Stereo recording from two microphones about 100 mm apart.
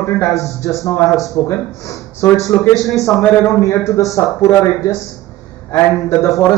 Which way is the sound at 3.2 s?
25° left (ahead or behind).